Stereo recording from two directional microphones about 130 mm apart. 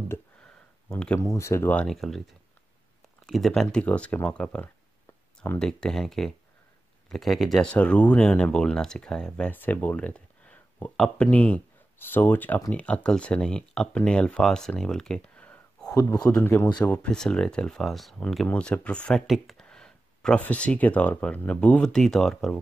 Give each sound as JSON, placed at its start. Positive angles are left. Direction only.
{"t": 0.1, "sound": "speech", "side_deg": 15}
{"t": 1.2, "sound": "speech", "side_deg": 20}
{"t": 1.9, "sound": "speech", "side_deg": 0}
{"t": 3.3, "sound": "speech", "side_deg": 0}
{"t": 15.9, "sound": "speech", "side_deg": 25}
{"t": 16.3, "sound": "speech", "side_deg": 15}